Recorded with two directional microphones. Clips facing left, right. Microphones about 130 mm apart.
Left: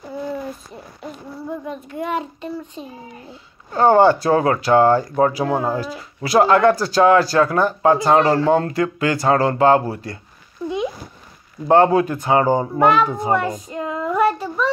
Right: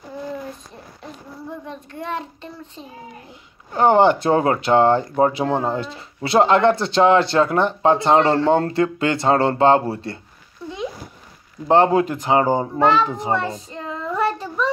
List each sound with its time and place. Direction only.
1.7 s a child's voice: 10° left (ahead or behind)
3.3 s speech: 20° right (ahead or behind)
10.6 s a sound: 15° left (ahead or behind)
11.6 s speech: 20° right (ahead or behind)
12.7 s a child's voice: 10° left (ahead or behind)
13.3 s child singing: 15° left (ahead or behind)